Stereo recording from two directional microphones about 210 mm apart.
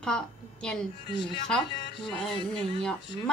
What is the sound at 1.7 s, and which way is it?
Speech, 55° left (ahead or behind).